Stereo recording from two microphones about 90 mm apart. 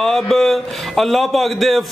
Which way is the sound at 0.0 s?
5° left (ahead or behind).